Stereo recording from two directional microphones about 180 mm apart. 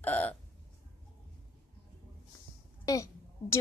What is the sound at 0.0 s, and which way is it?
Hiccup, 10° left (ahead or behind).